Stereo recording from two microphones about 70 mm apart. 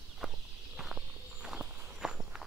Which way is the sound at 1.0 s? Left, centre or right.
Right.